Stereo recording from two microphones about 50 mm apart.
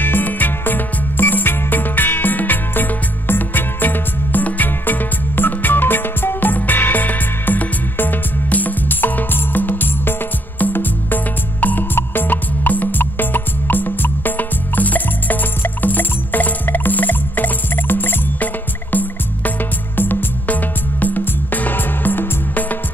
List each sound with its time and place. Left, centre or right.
0.0 s music: left